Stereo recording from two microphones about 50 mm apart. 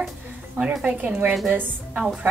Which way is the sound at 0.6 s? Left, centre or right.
Centre.